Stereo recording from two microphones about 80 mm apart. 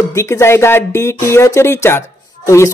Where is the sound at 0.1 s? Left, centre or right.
Left.